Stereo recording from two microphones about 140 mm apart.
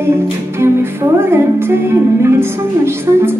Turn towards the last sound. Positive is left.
turn(degrees=-15)  # may be behind; listen again after turning